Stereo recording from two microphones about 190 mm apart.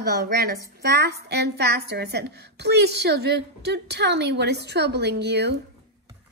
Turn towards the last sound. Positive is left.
turn(degrees=-60)  # may be behind; listen again after turning